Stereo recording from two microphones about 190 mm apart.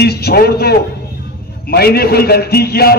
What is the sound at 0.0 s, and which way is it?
A man's voice, 55° left (ahead or behind).